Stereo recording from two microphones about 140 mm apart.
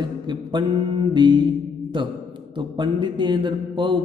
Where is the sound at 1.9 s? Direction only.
35° right (ahead or behind).